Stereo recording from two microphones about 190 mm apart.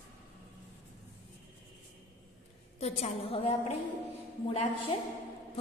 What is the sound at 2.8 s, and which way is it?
A woman's voice, 35° left (ahead or behind).